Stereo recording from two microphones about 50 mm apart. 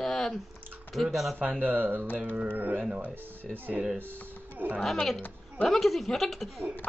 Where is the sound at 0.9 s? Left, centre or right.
Centre.